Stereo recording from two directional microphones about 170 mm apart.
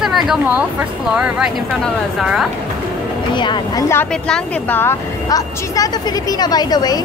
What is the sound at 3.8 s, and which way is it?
Speech, 10° left (ahead or behind).